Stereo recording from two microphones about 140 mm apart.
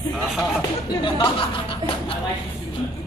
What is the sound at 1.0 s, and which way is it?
Speech, 35° left (ahead or behind).